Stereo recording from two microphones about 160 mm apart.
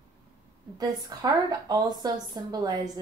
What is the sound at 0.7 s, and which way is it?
A woman's voice, 25° right (ahead or behind).